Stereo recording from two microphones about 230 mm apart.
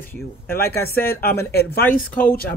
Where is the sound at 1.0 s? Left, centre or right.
Left.